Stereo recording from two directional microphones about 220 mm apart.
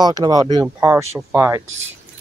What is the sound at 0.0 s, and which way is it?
Speech, 20° right (ahead or behind).